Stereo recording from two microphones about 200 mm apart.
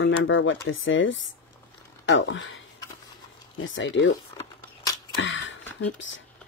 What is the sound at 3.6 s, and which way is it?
Speech, 70° left (ahead or behind).